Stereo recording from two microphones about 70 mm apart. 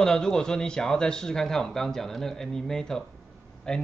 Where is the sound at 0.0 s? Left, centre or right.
Centre.